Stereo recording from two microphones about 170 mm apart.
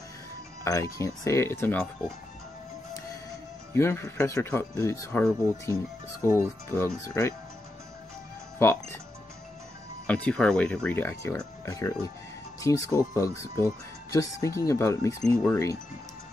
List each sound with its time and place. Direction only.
0.7 s speech: 20° left (ahead or behind)
3.7 s speech: 15° left (ahead or behind)
10.0 s speech: 10° left (ahead or behind)